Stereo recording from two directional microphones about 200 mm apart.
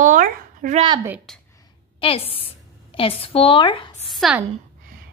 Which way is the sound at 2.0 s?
30° left (ahead or behind).